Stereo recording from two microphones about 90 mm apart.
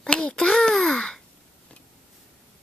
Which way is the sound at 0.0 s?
10° left (ahead or behind).